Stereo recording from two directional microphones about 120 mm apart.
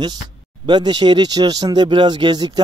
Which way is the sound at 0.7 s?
35° right (ahead or behind).